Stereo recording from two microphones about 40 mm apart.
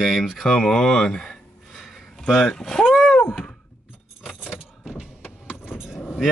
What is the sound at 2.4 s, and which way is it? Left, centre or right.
Speech, centre.